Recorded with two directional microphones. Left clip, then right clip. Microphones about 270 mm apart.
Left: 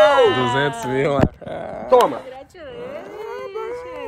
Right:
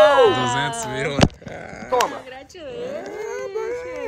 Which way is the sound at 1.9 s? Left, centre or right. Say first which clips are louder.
Left 6 dB; centre.